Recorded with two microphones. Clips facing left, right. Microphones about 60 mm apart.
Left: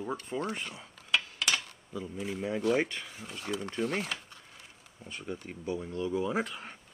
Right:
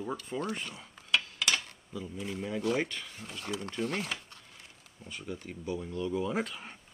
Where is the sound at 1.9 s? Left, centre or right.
Centre.